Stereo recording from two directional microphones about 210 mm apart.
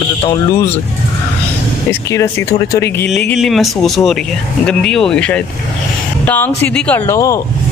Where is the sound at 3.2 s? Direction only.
Centre (ahead or behind).